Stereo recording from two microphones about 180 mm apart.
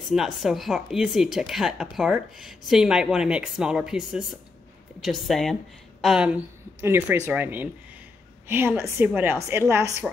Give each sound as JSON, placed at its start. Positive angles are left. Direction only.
{"t": 0.1, "sound": "a woman's voice", "side_deg": 0}